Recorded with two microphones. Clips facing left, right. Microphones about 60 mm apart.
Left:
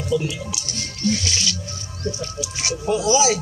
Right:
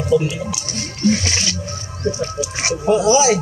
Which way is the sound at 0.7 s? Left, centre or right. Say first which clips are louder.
Right 5 dB; right.